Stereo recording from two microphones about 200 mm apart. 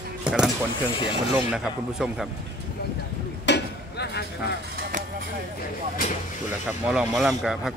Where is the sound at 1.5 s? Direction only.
5° right (ahead or behind).